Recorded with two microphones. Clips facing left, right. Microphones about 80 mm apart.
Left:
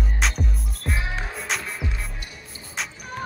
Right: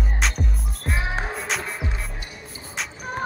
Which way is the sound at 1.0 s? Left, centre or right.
Right.